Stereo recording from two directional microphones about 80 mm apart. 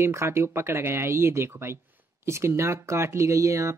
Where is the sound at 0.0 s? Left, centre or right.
Right.